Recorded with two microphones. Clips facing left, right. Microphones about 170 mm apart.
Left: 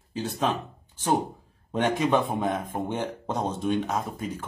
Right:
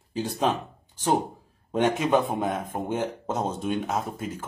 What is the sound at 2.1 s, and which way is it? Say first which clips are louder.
Speech: right 1 dB; 5° right (ahead or behind).